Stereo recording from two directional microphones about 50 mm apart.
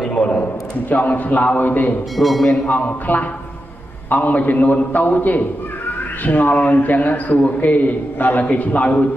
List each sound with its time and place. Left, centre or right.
0.3 s a man's voice: left
2.1 s speech: centre
2.7 s a man's voice: left